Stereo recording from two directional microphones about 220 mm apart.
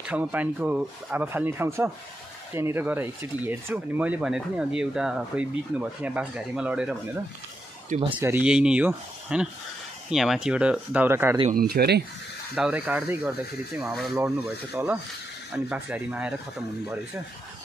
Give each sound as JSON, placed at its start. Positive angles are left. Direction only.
{"t": 0.0, "sound": "speech", "side_deg": -5}
{"t": 8.0, "sound": "speech", "side_deg": -20}
{"t": 8.3, "sound": "speech", "side_deg": -5}
{"t": 11.5, "sound": "speech", "side_deg": -45}
{"t": 12.5, "sound": "speech", "side_deg": -5}
{"t": 14.1, "sound": "speech", "side_deg": -10}